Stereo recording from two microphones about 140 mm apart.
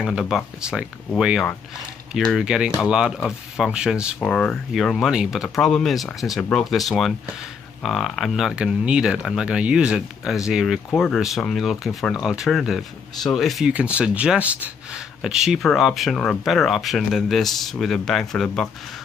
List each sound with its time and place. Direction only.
0.0 s speech: centre (ahead or behind)
4.2 s speech: 5° left (ahead or behind)